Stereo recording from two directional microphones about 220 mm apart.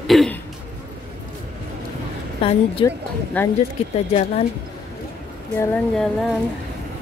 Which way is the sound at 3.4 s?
10° left (ahead or behind).